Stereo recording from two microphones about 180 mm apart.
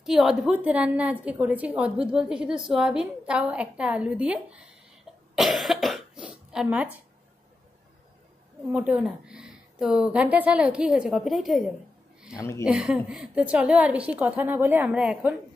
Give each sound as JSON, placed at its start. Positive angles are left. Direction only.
{"t": 0.0, "sound": "a woman's voice", "side_deg": 0}
{"t": 8.7, "sound": "a woman's voice", "side_deg": -10}
{"t": 12.4, "sound": "speech", "side_deg": 15}
{"t": 12.6, "sound": "a woman's voice", "side_deg": -5}